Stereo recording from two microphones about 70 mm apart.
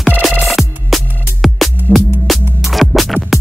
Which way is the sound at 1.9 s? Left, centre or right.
Centre.